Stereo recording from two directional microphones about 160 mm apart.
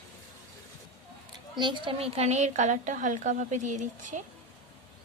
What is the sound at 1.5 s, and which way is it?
A woman's voice, 30° right (ahead or behind).